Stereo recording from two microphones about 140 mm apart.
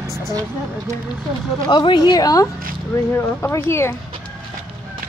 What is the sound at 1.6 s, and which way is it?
Speech, 35° left (ahead or behind).